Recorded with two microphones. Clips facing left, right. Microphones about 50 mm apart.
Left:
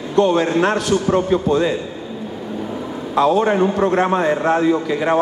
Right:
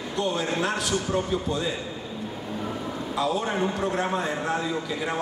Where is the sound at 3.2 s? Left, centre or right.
Left.